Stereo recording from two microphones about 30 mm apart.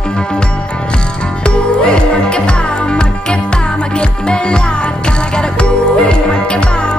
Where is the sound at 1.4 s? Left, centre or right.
Left.